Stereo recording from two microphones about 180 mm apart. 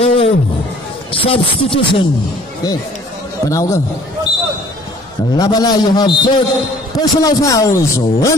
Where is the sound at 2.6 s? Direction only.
20° left (ahead or behind).